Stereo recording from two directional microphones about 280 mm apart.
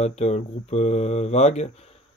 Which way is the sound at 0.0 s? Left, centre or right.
Left.